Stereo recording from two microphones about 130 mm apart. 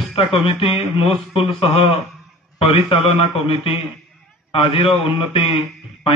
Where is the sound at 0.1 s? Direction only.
45° left (ahead or behind).